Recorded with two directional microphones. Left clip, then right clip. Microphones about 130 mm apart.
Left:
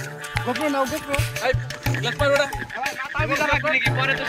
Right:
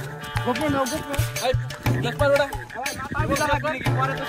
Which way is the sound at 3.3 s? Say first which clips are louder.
Left 1 dB; 30° right (ahead or behind).